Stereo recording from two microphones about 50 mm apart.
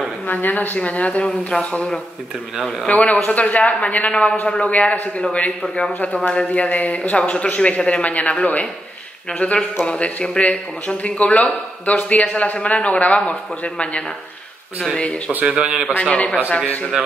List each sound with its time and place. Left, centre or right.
0.3 s speech: left
2.9 s speech: left
15.5 s a man's voice: centre
16.0 s speech: left